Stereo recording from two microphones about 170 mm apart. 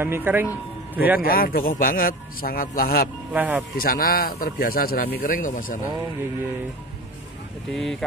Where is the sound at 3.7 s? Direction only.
60° left (ahead or behind).